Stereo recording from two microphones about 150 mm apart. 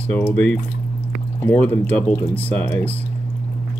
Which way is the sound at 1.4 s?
10° left (ahead or behind).